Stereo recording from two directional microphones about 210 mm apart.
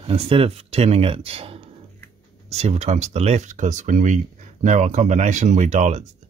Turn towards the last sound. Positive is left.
turn(degrees=-35)  # may be behind; listen again after turning